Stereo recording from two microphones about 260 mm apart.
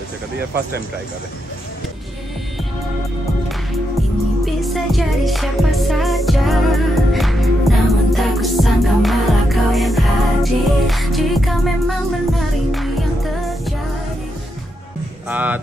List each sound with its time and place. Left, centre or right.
4.6 s music: centre
15.2 s speech: centre